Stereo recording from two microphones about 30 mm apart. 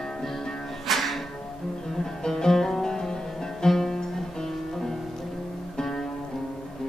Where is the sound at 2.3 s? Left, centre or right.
Centre.